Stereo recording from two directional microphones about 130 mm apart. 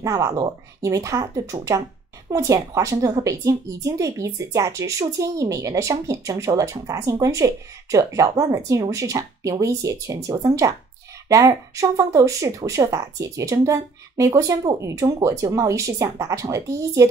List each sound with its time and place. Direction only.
0.0 s a woman's voice: 25° right (ahead or behind)